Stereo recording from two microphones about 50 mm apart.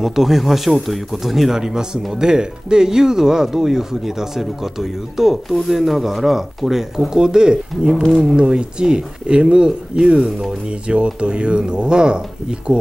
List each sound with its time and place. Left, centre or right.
0.0 s speech: centre
10.7 s speech: right